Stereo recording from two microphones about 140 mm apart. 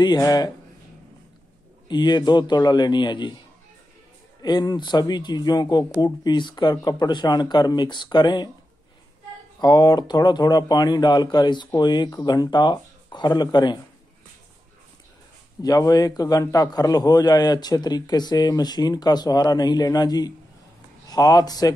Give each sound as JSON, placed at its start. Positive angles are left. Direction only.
{"t": 0.0, "sound": "a man's voice", "side_deg": 25}
{"t": 1.9, "sound": "speech", "side_deg": 30}
{"t": 4.4, "sound": "a man's voice", "side_deg": 30}
{"t": 9.6, "sound": "speech", "side_deg": 30}
{"t": 15.6, "sound": "a man's voice", "side_deg": 25}